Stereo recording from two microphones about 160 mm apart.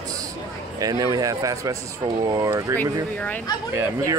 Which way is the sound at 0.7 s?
20° right (ahead or behind).